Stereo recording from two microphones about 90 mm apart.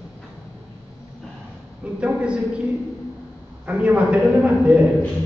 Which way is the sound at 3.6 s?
10° right (ahead or behind).